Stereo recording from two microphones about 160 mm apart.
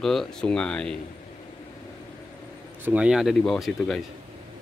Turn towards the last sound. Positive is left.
turn(degrees=0)  # may be behind; listen again after turning